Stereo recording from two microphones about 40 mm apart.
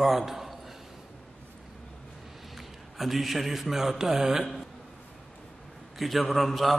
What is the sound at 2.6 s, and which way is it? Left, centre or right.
A man's voice, centre.